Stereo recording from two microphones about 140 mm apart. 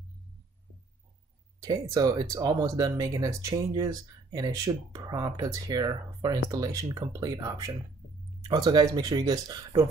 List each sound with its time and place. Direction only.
1.6 s speech: 25° right (ahead or behind)